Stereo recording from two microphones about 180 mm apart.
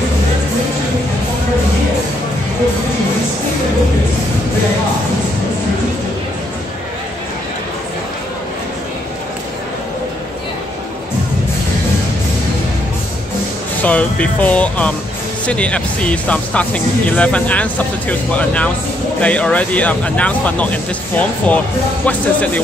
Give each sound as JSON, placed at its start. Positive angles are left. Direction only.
{"t": 13.8, "sound": "speech", "side_deg": 10}